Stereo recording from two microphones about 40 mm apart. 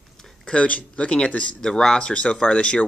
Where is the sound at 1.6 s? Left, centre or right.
Centre.